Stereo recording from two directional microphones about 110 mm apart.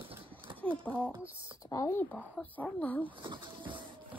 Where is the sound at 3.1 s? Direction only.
45° right (ahead or behind).